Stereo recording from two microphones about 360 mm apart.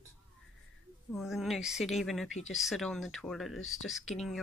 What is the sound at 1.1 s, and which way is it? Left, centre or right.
A woman's voice, centre.